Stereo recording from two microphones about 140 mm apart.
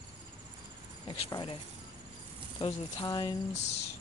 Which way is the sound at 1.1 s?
35° left (ahead or behind).